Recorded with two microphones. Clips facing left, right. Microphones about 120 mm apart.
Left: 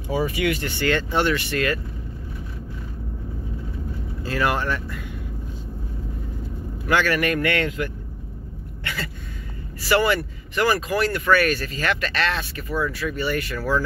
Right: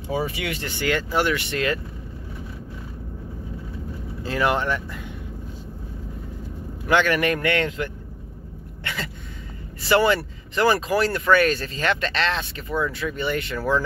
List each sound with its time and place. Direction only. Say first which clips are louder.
0.1 s speech: left 4 dB; 25° right (ahead or behind)
4.2 s speech: right 1 dB; 20° right (ahead or behind)
6.9 s speech: right 1 dB; 20° right (ahead or behind)
8.8 s a sound: even; 20° right (ahead or behind)
9.8 s speech: right 1 dB; 25° right (ahead or behind)